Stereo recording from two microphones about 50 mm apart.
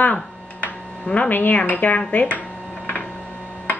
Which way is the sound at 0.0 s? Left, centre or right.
Left.